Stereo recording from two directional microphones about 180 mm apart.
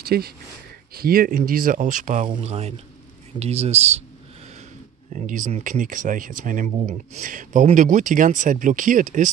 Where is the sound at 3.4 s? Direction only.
35° right (ahead or behind).